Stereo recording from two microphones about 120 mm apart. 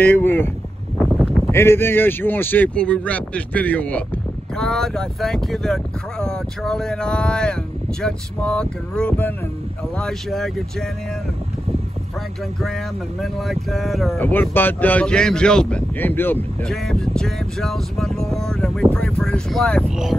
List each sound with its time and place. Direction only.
0.0 s speech: 15° left (ahead or behind)
1.5 s speech: 20° left (ahead or behind); by 10.9 s 5° left (ahead or behind)
13.2 s speech: centre (ahead or behind)
14.1 s speech: 20° left (ahead or behind)
16.6 s speech: centre (ahead or behind)